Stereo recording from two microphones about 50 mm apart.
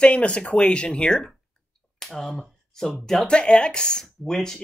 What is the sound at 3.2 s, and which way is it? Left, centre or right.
Speech, centre.